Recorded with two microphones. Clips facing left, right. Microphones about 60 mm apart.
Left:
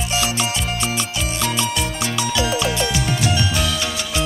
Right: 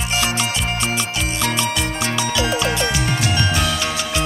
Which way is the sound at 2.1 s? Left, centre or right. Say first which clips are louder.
Even; right.